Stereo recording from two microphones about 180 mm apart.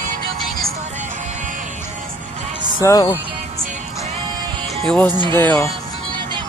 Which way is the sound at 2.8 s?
20° left (ahead or behind).